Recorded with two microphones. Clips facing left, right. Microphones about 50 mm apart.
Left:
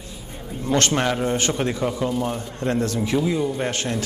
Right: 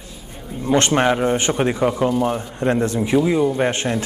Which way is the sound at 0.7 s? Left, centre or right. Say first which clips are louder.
Right 4 dB; right.